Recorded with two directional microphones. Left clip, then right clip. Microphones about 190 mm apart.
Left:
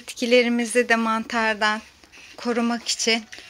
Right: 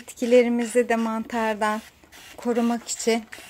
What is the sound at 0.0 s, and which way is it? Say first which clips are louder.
Speech: even; 10° right (ahead or behind).